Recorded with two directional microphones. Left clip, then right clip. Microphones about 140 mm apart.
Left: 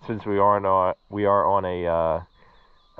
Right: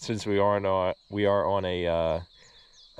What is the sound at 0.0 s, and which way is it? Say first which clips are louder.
Speech: left 4 dB; 30° right (ahead or behind).